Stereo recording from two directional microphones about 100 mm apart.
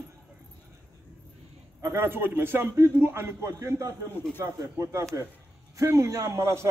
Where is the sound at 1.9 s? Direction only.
20° right (ahead or behind).